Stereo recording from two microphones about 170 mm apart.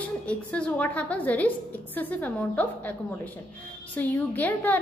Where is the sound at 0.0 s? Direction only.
10° left (ahead or behind).